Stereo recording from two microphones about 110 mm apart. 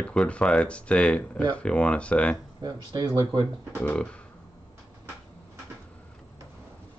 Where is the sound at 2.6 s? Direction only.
40° right (ahead or behind).